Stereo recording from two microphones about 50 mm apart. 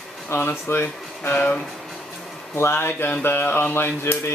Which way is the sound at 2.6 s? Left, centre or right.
Left.